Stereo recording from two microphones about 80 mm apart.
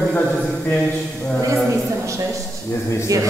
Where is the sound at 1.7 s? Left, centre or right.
Right.